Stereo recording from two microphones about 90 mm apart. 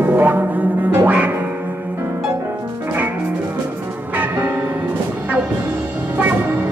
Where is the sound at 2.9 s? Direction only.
15° right (ahead or behind).